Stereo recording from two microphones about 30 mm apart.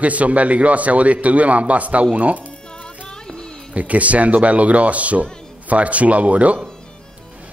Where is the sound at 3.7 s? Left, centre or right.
Right.